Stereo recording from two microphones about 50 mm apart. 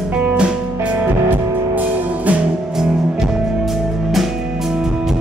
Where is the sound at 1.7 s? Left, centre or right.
Right.